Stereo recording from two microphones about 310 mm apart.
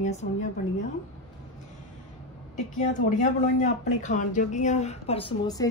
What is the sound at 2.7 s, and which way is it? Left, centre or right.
Speech, left.